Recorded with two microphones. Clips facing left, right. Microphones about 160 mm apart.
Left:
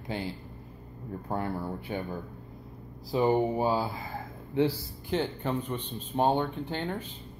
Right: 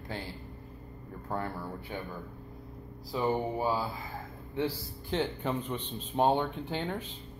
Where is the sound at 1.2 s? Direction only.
20° left (ahead or behind).